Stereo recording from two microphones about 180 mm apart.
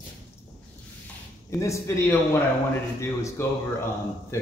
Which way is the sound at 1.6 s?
15° left (ahead or behind).